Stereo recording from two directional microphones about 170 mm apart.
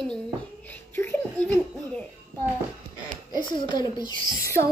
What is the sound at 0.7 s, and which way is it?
A child's voice, 10° left (ahead or behind).